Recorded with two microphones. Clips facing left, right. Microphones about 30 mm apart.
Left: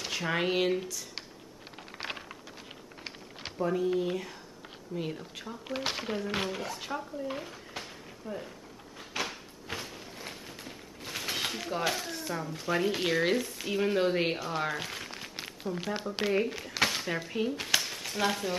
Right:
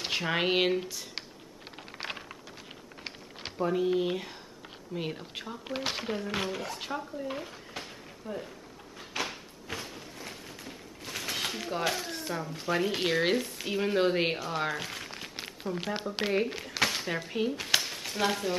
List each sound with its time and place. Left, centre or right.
0.2 s speech: right
1.8 s computer keyboard: centre
3.0 s a sound: centre
3.7 s speech: right
5.8 s speech: centre
9.1 s a sound: centre
17.7 s frying: centre